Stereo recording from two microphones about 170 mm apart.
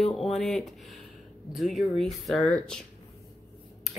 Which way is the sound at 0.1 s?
Centre (ahead or behind).